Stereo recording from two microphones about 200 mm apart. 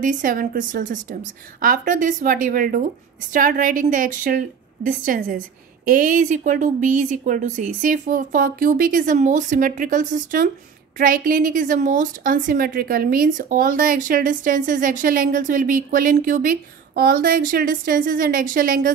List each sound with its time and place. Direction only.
0.0 s a woman's voice: 40° right (ahead or behind)